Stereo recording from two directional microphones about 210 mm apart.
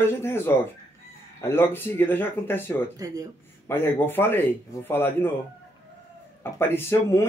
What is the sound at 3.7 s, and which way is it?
Speech, 10° left (ahead or behind).